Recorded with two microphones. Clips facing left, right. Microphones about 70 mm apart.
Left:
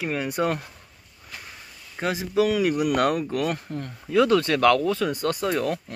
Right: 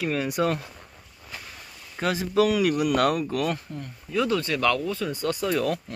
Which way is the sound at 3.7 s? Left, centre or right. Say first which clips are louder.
Left 5 dB; left.